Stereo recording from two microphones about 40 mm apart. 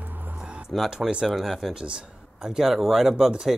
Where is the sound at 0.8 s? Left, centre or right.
Centre.